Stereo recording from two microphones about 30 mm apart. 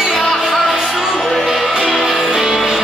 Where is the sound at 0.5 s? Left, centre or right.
Centre.